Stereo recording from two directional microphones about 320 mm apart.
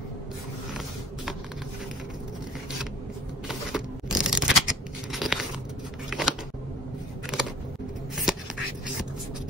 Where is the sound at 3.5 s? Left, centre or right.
Centre.